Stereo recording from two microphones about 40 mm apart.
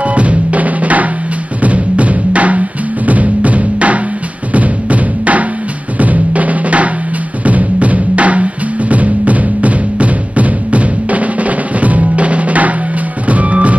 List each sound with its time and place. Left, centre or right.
0.0 s drum: right
1.6 s music: right
5.9 s drum: right
13.3 s music: right